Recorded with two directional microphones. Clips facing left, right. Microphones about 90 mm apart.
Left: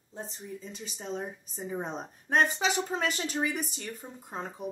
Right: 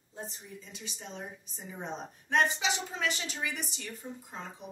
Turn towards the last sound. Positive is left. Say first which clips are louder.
# left 5 dB
turn(degrees=45)  # may be behind; listen again after turning